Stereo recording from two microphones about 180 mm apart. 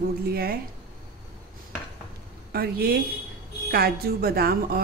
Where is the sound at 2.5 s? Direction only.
60° right (ahead or behind).